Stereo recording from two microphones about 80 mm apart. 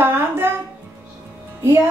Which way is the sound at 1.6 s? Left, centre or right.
Right.